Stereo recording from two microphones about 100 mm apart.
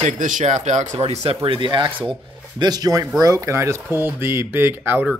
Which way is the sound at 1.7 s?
50° right (ahead or behind).